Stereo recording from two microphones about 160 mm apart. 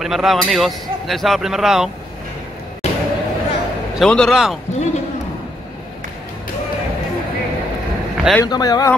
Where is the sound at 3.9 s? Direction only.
5° left (ahead or behind).